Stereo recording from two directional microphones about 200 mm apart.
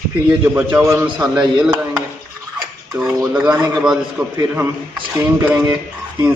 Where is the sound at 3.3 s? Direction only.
5° right (ahead or behind).